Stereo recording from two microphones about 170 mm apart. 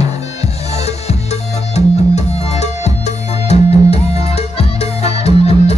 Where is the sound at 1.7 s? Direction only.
40° left (ahead or behind).